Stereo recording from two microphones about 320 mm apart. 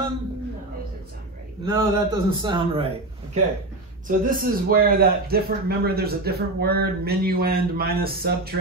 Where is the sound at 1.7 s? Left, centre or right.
Centre.